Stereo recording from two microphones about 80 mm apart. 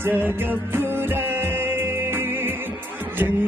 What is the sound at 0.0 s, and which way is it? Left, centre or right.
Music, right.